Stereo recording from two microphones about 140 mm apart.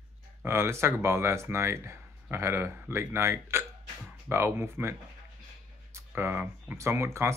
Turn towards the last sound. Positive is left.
turn(degrees=-20)  # may be behind; listen again after turning